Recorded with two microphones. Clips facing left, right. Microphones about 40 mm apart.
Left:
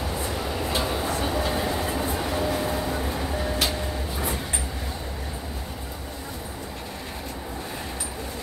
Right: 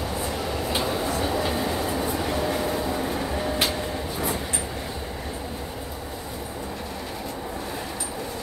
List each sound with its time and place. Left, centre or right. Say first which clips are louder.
0.2 s train: right 1 dB; centre
0.8 s a sound: right 1 dB; centre
1.4 s train: even; centre
2.2 s vehicle: right 1 dB; centre